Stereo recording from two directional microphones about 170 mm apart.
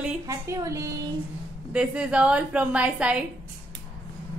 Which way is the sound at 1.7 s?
5° right (ahead or behind).